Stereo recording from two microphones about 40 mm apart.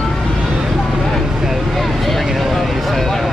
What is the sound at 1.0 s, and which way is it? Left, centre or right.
Vehicle, centre.